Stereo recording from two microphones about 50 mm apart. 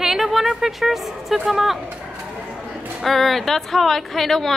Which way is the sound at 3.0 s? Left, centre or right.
Centre.